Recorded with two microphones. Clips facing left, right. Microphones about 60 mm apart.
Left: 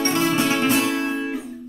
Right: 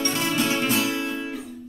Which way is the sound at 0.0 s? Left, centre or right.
Left.